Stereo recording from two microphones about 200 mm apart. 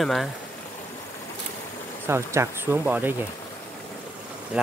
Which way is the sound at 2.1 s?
15° right (ahead or behind).